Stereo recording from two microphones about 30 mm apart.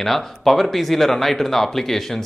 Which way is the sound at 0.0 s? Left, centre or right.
Centre.